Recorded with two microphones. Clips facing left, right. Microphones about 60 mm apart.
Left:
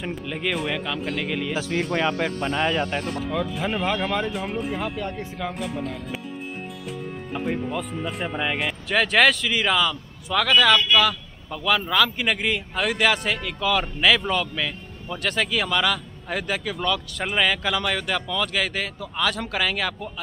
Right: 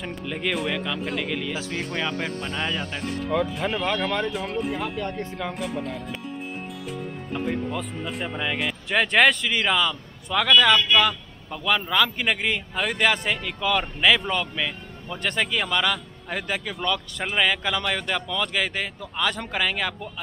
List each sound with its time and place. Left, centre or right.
0.0 s speech: centre
1.5 s speech: left
3.1 s speech: centre
7.3 s speech: centre